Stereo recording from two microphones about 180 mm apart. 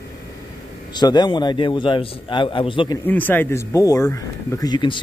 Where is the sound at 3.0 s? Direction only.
10° left (ahead or behind).